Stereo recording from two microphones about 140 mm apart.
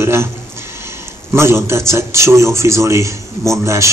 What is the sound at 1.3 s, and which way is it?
A man's voice, 20° right (ahead or behind).